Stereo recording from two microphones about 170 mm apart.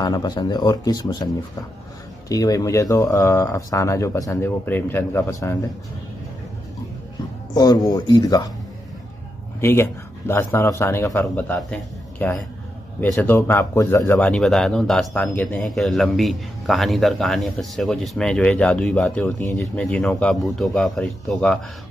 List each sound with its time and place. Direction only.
0.0 s speech: 25° left (ahead or behind)
7.5 s speech: 20° left (ahead or behind)
9.6 s speech: 15° left (ahead or behind)
14.1 s a man's voice: 5° left (ahead or behind)